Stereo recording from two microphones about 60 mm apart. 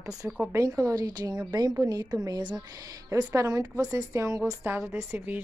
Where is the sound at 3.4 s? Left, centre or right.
Right.